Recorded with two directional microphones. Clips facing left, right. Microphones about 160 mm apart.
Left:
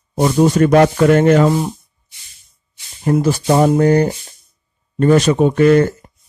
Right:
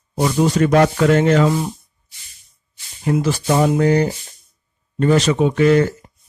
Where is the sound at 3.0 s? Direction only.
45° left (ahead or behind).